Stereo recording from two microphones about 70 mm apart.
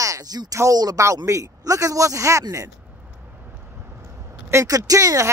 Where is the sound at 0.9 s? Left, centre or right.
Right.